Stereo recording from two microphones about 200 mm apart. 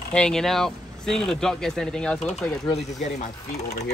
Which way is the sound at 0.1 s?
5° left (ahead or behind).